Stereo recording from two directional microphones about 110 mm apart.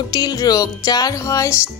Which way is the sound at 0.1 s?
35° left (ahead or behind).